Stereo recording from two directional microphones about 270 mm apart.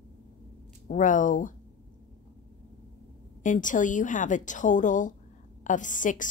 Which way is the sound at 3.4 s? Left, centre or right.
Left.